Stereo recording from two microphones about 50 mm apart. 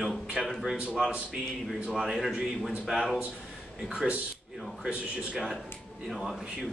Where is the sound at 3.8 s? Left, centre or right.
Centre.